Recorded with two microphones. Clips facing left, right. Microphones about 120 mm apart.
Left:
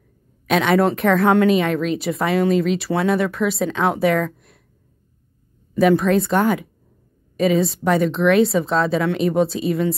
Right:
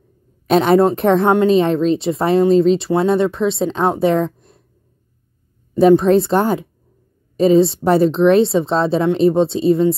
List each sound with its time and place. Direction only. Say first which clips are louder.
0.5 s a woman's voice: right 4 dB; 35° right (ahead or behind)
5.8 s speech: right 5 dB; 30° right (ahead or behind)